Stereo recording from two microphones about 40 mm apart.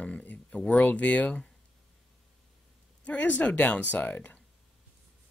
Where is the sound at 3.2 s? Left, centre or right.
Left.